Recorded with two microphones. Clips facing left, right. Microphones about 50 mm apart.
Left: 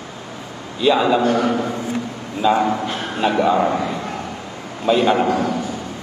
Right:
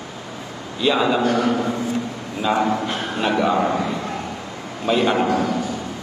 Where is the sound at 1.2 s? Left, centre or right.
Left.